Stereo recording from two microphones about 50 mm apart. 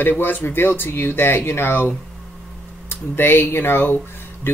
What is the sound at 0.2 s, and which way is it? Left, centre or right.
Speech, left.